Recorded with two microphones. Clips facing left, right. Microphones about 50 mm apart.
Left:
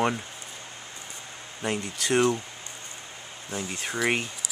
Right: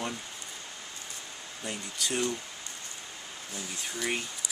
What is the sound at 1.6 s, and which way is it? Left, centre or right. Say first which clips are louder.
Speech: left 7 dB; left.